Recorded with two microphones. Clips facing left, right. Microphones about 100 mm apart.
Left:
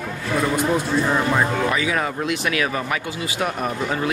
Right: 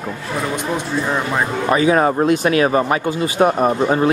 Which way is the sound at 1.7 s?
35° right (ahead or behind).